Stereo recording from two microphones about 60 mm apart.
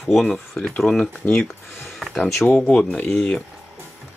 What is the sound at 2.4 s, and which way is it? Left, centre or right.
Speech, left.